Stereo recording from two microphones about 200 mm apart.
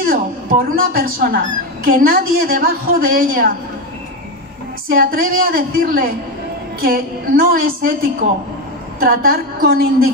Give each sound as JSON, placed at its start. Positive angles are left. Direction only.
{"t": 0.0, "sound": "a woman's voice", "side_deg": -45}
{"t": 4.8, "sound": "a woman's voice", "side_deg": -45}